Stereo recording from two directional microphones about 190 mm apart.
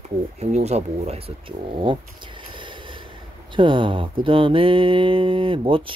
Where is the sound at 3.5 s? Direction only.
25° right (ahead or behind).